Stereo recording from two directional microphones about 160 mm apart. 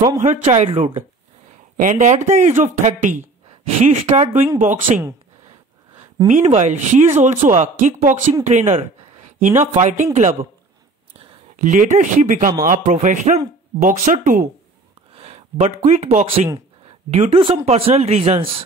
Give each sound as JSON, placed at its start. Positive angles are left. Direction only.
{"t": 0.2, "sound": "speech", "side_deg": -45}
{"t": 1.8, "sound": "speech", "side_deg": -50}
{"t": 6.2, "sound": "speech", "side_deg": -50}
{"t": 11.5, "sound": "speech", "side_deg": -55}
{"t": 15.1, "sound": "a sound", "side_deg": -35}
{"t": 15.8, "sound": "speech", "side_deg": -45}